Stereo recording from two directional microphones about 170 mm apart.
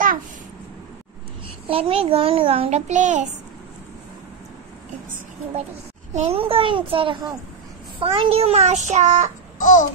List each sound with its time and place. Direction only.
1.7 s a child's voice: 35° right (ahead or behind)
6.1 s a child's voice: 35° right (ahead or behind)
9.6 s a child's voice: 50° left (ahead or behind)